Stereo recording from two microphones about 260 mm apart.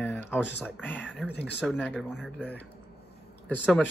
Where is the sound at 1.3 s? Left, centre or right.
Left.